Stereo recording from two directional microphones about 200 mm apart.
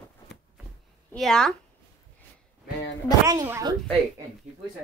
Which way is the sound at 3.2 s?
15° right (ahead or behind).